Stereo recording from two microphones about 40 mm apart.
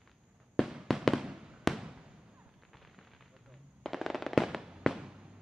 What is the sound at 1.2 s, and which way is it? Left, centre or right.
Fireworks, centre.